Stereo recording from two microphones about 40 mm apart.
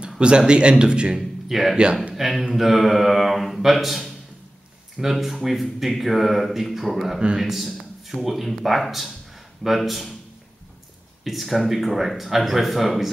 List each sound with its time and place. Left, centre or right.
0.2 s speech: right
1.1 s speech: centre
11.2 s speech: centre